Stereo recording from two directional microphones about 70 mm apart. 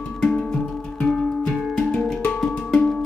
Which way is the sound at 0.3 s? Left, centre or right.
Centre.